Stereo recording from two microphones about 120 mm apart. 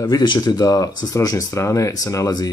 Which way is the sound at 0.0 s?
35° left (ahead or behind).